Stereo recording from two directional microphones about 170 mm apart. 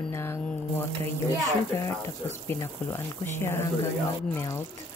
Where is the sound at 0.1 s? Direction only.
15° left (ahead or behind).